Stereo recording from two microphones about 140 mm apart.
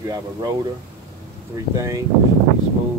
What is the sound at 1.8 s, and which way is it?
Speech, 20° right (ahead or behind).